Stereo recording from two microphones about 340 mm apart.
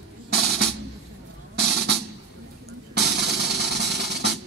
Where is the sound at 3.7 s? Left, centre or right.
Right.